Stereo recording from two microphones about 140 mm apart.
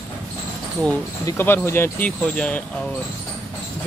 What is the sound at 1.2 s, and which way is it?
Speech, 15° left (ahead or behind).